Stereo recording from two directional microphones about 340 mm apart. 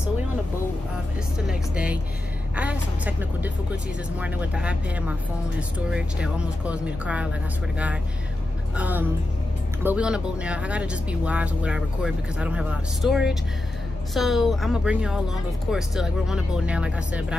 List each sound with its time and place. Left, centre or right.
1.5 s speech: centre
8.7 s speech: centre